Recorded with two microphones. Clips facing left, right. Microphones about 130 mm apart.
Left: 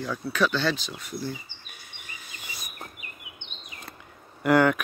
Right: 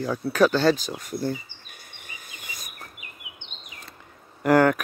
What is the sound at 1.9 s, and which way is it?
Insect, 45° right (ahead or behind).